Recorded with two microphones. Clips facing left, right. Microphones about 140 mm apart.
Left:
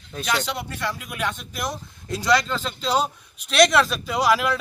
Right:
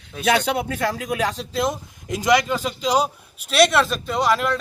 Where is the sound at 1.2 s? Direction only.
30° right (ahead or behind).